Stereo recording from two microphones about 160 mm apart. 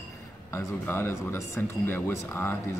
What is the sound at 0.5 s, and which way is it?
Speech, 15° left (ahead or behind).